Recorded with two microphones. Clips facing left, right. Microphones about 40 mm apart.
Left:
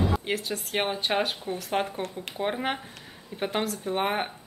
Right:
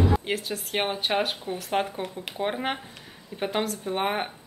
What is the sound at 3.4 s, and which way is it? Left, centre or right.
Speech, centre.